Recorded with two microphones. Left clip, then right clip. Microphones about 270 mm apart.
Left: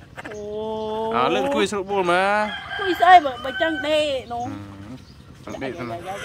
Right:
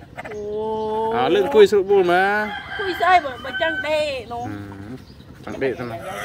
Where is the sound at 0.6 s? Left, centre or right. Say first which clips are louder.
Right 3 dB; left.